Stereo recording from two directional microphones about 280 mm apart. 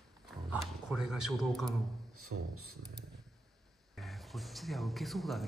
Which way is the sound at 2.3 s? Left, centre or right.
Right.